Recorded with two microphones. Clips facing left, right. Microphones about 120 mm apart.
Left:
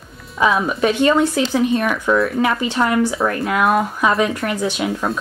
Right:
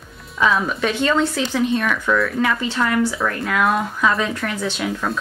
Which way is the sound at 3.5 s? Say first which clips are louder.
Left 2 dB; 5° left (ahead or behind).